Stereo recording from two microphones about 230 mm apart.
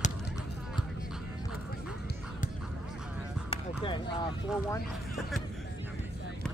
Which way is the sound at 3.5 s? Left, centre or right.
Left.